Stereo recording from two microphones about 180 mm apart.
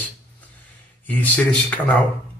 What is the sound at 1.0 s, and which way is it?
Speech, 10° left (ahead or behind).